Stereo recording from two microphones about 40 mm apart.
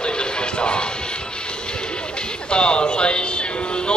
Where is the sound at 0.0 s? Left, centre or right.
Left.